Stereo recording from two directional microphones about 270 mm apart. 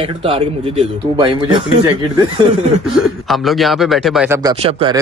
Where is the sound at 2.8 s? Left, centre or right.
Centre.